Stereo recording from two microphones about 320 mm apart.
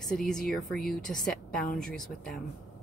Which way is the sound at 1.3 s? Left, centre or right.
Left.